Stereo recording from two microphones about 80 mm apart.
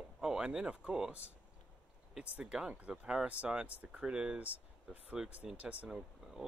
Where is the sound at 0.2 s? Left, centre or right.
Centre.